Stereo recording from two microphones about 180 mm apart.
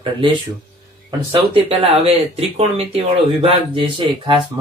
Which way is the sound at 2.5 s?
35° right (ahead or behind).